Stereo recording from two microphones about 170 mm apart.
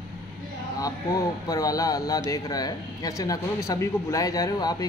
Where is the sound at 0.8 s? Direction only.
20° left (ahead or behind).